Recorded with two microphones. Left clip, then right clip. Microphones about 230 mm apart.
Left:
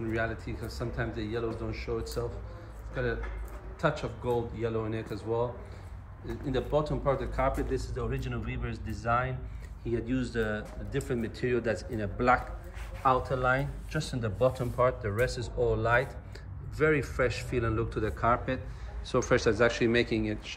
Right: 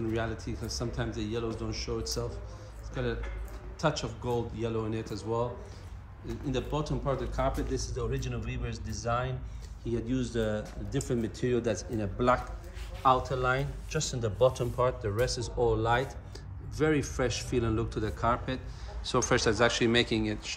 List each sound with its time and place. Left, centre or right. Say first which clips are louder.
0.1 s speech: left 1 dB; centre
6.2 s speech: left 2 dB; centre
13.0 s speech: right 1 dB; centre